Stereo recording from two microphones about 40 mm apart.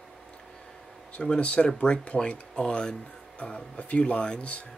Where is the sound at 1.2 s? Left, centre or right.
Left.